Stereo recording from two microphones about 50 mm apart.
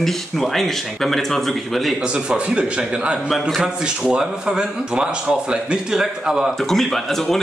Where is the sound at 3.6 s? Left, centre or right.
Centre.